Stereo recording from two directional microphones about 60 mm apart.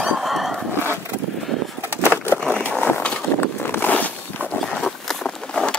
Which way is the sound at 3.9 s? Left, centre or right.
Left.